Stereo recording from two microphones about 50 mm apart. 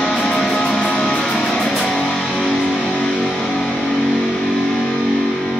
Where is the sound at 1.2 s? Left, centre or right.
Centre.